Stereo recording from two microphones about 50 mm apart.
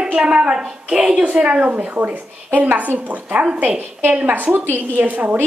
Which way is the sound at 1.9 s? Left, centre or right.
Right.